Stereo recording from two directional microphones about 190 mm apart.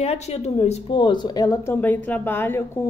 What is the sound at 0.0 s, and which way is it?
Speech, 35° left (ahead or behind).